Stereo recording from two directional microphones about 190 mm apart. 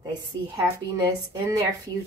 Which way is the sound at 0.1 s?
20° right (ahead or behind).